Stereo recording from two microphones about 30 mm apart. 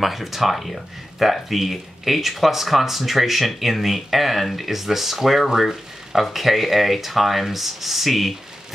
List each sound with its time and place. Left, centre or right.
0.0 s speech: centre